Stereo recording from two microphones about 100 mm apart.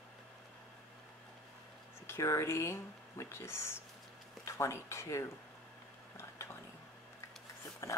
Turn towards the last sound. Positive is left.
turn(degrees=30)  # may be behind; listen again after turning